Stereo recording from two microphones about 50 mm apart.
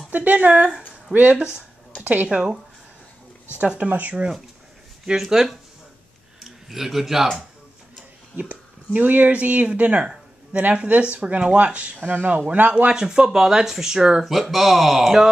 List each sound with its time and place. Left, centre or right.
0.1 s speech: right
2.2 s speech: centre
3.7 s speech: right
5.1 s a man's voice: centre
8.4 s speech: right
12.9 s speech: centre
14.2 s speech: centre